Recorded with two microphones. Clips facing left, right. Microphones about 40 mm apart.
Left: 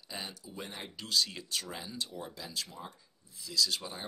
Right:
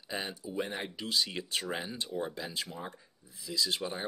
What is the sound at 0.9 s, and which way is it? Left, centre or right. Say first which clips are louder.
Speech: left 4 dB; centre.